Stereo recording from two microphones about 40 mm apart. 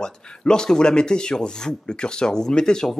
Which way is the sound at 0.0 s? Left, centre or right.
Centre.